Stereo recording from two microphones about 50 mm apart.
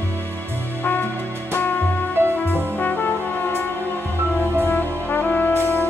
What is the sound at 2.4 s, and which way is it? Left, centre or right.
Brass instrument, left.